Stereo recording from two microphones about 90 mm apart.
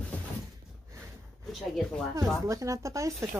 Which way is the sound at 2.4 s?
40° right (ahead or behind).